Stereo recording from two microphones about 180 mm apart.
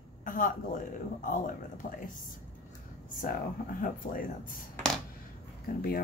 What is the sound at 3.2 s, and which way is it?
A woman's voice, 50° left (ahead or behind).